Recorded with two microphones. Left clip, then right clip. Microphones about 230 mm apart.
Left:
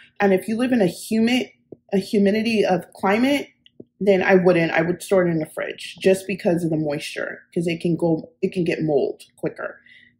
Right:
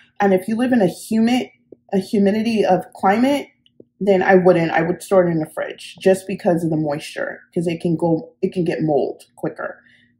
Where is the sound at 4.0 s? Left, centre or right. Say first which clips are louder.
Right 3 dB; centre.